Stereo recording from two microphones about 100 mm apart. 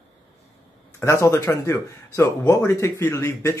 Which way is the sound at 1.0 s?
30° left (ahead or behind).